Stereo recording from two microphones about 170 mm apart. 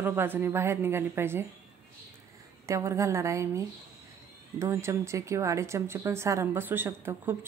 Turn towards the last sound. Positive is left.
turn(degrees=-15)  # may be behind; listen again after turning